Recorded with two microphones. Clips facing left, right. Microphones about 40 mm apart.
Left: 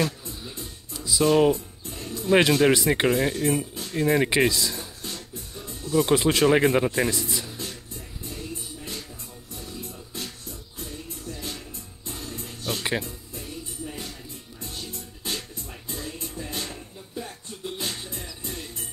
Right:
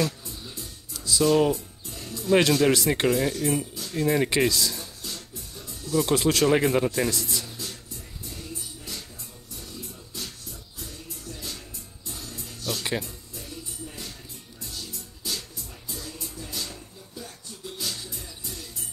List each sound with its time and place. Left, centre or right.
0.3 s music: centre
1.2 s speech: left
1.9 s music: left
2.8 s speech: centre
3.1 s speech: left; by 4.8 s centre
5.0 s music: left
6.0 s speech: centre
7.1 s speech: centre
9.6 s music: left
13.8 s music: left
14.6 s music: left